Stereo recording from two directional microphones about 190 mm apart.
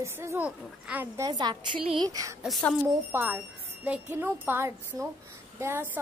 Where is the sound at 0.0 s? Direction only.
15° right (ahead or behind).